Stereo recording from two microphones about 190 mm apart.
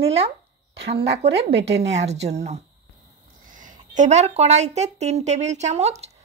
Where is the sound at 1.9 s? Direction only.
35° right (ahead or behind).